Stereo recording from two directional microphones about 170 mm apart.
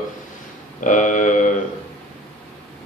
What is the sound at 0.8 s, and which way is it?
Speech, 50° left (ahead or behind).